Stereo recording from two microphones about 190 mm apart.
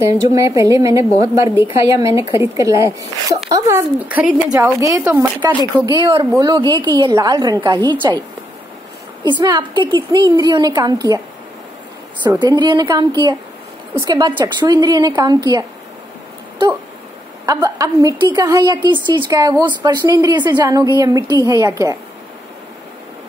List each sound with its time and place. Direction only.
0.0 s a woman's voice: 15° right (ahead or behind)
9.2 s a woman's voice: 25° right (ahead or behind)
12.4 s a woman's voice: 20° right (ahead or behind)
17.5 s a woman's voice: 20° right (ahead or behind)